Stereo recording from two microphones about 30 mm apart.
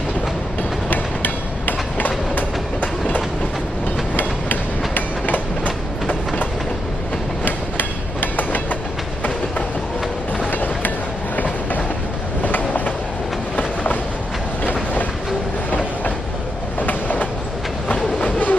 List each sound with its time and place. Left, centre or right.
0.8 s train: left
4.2 s train: left
7.4 s train: left
10.5 s train: left
14.6 s train: left
16.8 s train: left